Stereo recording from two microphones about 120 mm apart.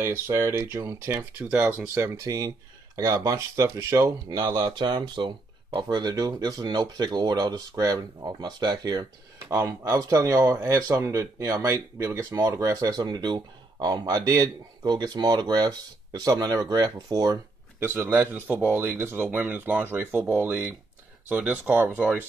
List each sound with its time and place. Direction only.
0.0 s speech: 20° right (ahead or behind)
17.7 s speech: 20° right (ahead or behind)